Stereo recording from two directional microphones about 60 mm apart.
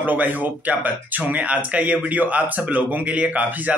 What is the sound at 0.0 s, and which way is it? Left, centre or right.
Speech, right.